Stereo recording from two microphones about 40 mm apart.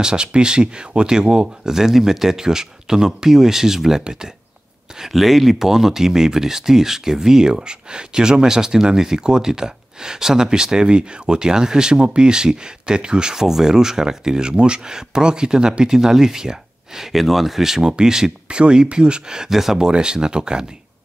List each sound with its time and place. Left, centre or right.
0.0 s speech: right
5.1 s speech: centre
19.9 s speech: right